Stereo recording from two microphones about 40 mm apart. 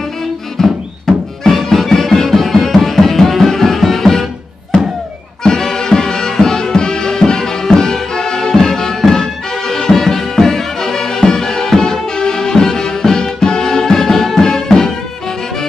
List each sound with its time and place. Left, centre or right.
0.6 s music: centre
5.4 s music: centre